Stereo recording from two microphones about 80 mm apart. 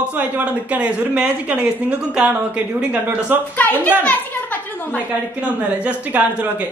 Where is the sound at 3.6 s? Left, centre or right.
Centre.